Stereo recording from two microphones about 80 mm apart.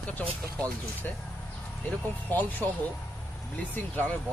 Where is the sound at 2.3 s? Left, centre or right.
Left.